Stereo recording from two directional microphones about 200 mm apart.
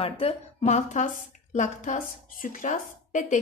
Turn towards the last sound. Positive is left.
turn(degrees=40)  # may be behind; listen again after turning